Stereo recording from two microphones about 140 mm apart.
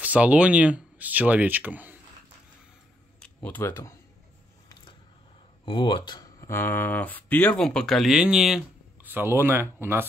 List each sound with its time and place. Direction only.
0.0 s speech: 10° right (ahead or behind)
3.4 s speech: 15° left (ahead or behind)
5.7 s speech: 35° left (ahead or behind); by 9.1 s 5° right (ahead or behind)
9.1 s speech: 15° right (ahead or behind)